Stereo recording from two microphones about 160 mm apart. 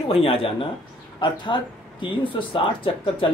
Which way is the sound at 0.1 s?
35° left (ahead or behind).